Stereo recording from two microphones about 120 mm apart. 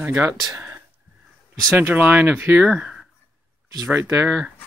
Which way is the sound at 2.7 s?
5° right (ahead or behind).